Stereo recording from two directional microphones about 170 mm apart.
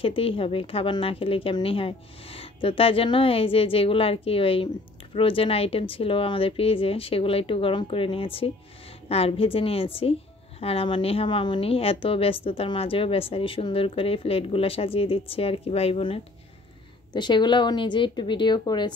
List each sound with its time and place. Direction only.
0.0 s a woman's voice: 35° left (ahead or behind)